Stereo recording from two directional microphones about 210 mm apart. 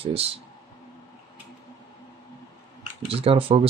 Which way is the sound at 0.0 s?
30° right (ahead or behind).